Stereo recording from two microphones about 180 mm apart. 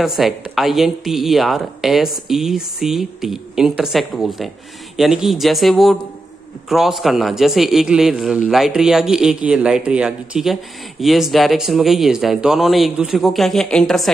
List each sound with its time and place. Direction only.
0.0 s a man's voice: centre (ahead or behind)